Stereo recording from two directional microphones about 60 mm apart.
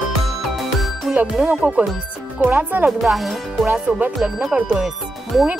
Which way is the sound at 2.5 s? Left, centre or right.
Right.